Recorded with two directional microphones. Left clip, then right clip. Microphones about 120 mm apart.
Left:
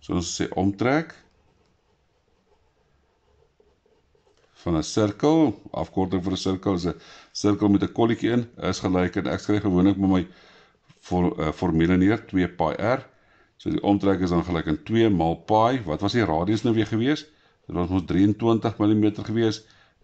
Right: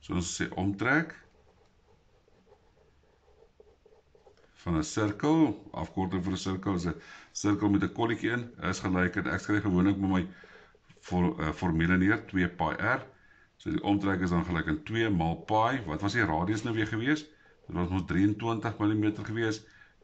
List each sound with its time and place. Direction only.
0.0 s speech: 45° left (ahead or behind)
4.6 s speech: 45° left (ahead or behind)